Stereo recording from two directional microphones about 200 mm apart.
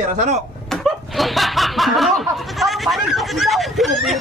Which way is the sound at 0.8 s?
Centre (ahead or behind).